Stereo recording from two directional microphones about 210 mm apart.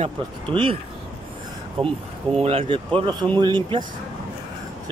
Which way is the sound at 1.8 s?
25° right (ahead or behind).